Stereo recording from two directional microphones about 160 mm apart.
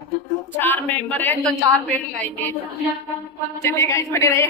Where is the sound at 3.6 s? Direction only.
20° left (ahead or behind).